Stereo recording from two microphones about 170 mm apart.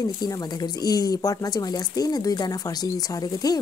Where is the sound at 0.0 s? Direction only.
25° left (ahead or behind).